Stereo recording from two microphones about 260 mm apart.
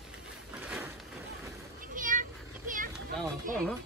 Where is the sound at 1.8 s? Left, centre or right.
Right.